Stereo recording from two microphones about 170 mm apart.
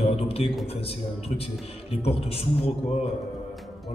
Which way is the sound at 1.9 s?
35° left (ahead or behind).